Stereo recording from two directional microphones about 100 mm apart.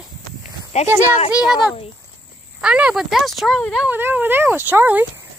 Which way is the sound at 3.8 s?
20° right (ahead or behind).